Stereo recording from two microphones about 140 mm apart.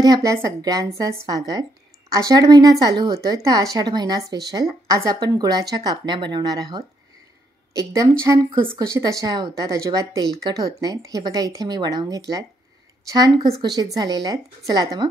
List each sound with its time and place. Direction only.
0.0 s speech: 25° right (ahead or behind)